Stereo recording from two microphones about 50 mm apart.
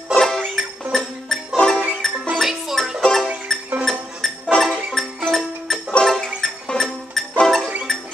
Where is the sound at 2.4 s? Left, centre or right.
Centre.